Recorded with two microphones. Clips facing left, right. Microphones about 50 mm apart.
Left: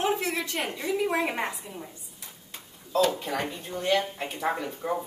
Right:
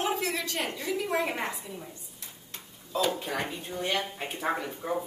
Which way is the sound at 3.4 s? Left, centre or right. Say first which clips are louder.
Left 1 dB; centre.